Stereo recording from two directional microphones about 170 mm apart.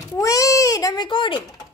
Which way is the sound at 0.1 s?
20° left (ahead or behind).